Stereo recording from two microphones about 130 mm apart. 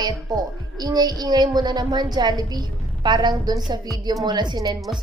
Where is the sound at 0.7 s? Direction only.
30° right (ahead or behind).